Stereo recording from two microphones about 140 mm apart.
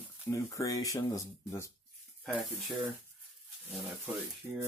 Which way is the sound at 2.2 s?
Centre (ahead or behind).